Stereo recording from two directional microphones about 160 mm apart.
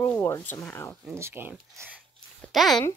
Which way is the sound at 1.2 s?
15° right (ahead or behind).